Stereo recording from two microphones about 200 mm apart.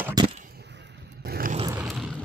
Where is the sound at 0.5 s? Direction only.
60° right (ahead or behind).